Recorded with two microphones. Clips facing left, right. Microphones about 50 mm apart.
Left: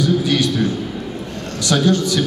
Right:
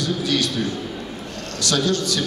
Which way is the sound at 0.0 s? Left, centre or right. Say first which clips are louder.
Left 5 dB; left.